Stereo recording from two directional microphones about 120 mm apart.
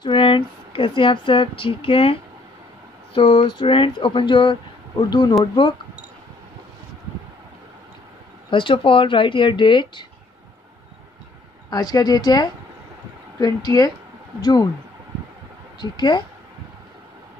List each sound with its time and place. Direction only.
0.0 s speech: 45° left (ahead or behind)
3.2 s a woman's voice: 45° left (ahead or behind)
8.5 s speech: 45° left (ahead or behind)
11.7 s a woman's voice: 35° left (ahead or behind)
15.8 s a woman's voice: 40° left (ahead or behind)